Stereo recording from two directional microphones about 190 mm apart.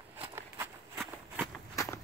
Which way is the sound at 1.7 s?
15° left (ahead or behind).